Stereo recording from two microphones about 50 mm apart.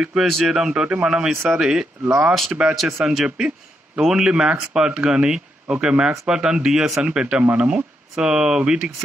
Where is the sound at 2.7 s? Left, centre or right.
Centre.